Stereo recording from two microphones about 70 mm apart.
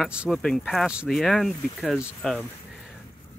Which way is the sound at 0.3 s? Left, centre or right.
Centre.